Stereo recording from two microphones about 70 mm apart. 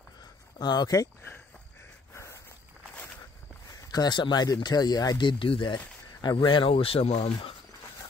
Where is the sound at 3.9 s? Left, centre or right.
Left.